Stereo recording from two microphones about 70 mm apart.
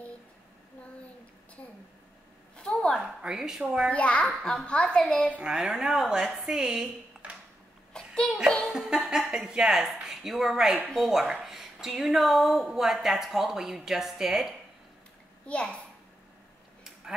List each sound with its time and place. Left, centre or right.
2.5 s a sound: centre
3.0 s a sound: centre
3.6 s speech: centre
3.9 s a woman's voice: centre
5.4 s speech: centre
7.9 s a sound: centre
8.6 s music: centre
9.3 s a woman's voice: centre
15.4 s a woman's voice: centre